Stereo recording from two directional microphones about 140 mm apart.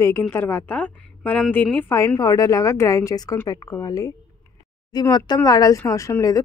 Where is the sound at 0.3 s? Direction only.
15° left (ahead or behind).